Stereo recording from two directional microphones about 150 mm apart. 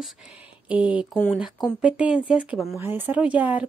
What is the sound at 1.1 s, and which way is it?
Speech, 5° left (ahead or behind).